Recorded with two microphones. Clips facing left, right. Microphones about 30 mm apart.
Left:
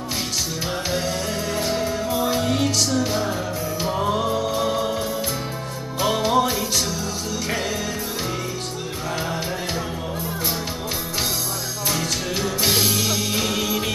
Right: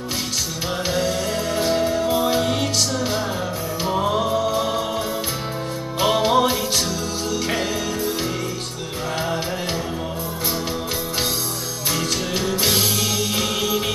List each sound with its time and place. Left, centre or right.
0.8 s music: centre
2.2 s music: centre
3.8 s music: centre
5.9 s music: right
6.3 s music: right
12.5 s music: right